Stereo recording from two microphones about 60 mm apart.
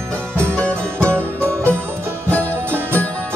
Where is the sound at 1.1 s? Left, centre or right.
Right.